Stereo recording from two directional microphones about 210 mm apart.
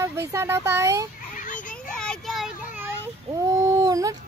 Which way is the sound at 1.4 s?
40° left (ahead or behind).